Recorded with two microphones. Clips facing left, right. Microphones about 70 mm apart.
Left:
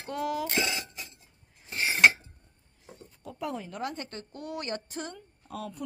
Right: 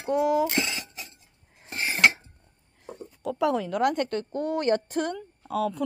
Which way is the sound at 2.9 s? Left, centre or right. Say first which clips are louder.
Right 12 dB; right.